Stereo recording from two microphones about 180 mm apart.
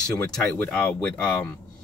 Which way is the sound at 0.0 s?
5° left (ahead or behind).